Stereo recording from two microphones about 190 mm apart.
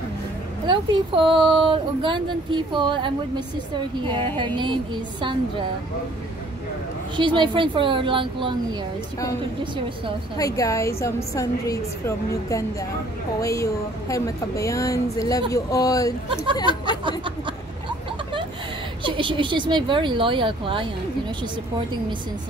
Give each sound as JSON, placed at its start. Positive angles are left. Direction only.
{"t": 0.7, "sound": "speech", "side_deg": -25}
{"t": 4.6, "sound": "speech", "side_deg": -25}
{"t": 7.2, "sound": "speech", "side_deg": -25}
{"t": 10.3, "sound": "a woman's voice", "side_deg": 20}
{"t": 19.0, "sound": "speech", "side_deg": -25}